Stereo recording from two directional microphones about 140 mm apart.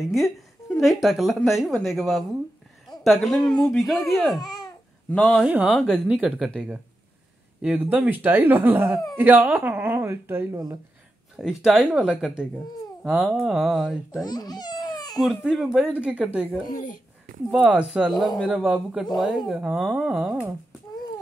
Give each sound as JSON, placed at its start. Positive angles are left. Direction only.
{"t": 0.0, "sound": "speech", "side_deg": 0}
{"t": 4.4, "sound": "babbling", "side_deg": 30}
{"t": 5.1, "sound": "speech", "side_deg": 5}
{"t": 5.4, "sound": "speech", "side_deg": -5}
{"t": 7.6, "sound": "speech", "side_deg": -10}
{"t": 11.3, "sound": "speech", "side_deg": -5}
{"t": 14.2, "sound": "a sound", "side_deg": 30}
{"t": 15.1, "sound": "speech", "side_deg": 0}
{"t": 16.7, "sound": "speech", "side_deg": 65}
{"t": 17.5, "sound": "speech", "side_deg": -10}